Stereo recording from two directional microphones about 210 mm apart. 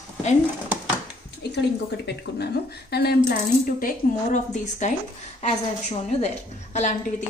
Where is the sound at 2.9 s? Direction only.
50° left (ahead or behind).